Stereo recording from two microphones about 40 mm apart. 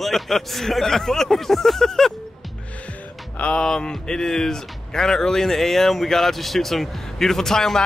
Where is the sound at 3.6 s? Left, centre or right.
Centre.